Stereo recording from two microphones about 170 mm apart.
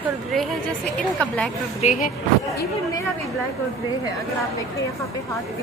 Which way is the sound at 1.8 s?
50° left (ahead or behind).